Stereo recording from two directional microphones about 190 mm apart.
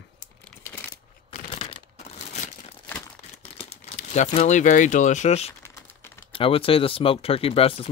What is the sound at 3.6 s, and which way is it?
Speech, 40° left (ahead or behind).